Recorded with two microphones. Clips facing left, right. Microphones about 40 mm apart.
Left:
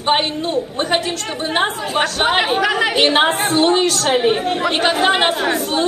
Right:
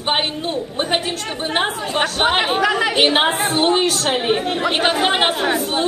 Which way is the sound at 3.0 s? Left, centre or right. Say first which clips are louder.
Left 2 dB; centre.